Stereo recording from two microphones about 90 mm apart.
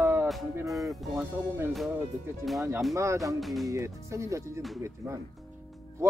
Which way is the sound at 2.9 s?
35° right (ahead or behind).